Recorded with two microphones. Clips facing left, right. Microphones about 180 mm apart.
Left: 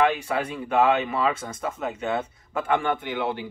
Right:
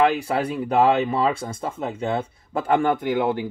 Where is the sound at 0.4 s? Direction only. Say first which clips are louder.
Right 3 dB; 35° right (ahead or behind).